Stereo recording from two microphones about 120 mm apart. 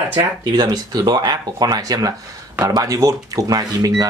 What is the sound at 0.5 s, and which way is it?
Speech, 35° right (ahead or behind).